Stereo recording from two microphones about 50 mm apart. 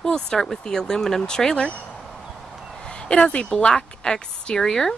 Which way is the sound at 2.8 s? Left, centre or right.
Centre.